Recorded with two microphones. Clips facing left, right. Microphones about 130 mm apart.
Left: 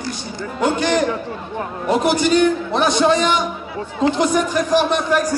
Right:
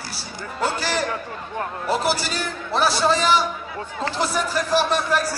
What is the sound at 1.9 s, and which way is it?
A man's voice, 5° right (ahead or behind).